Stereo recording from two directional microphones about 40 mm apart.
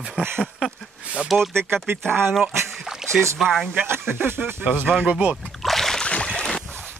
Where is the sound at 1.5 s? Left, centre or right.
Right.